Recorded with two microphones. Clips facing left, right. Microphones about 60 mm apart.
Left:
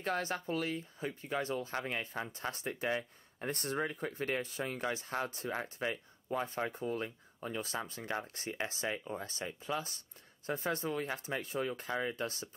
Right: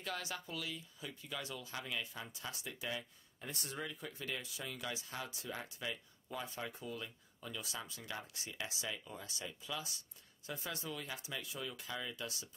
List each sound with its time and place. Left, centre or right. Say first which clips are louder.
0.0 s speech: left 8 dB; left